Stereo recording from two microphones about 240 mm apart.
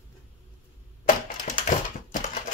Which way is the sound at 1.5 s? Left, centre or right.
Left.